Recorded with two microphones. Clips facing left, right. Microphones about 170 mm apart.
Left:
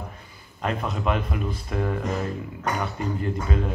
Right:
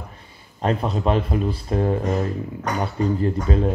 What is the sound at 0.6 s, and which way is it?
A man's voice, 30° right (ahead or behind).